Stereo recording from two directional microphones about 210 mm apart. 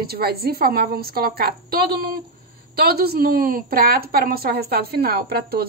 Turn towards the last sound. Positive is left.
turn(degrees=-45)  # may be behind; listen again after turning